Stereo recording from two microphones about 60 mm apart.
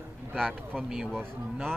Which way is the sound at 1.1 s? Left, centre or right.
Centre.